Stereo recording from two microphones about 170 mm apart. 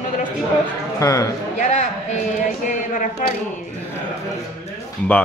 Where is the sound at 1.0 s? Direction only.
20° left (ahead or behind).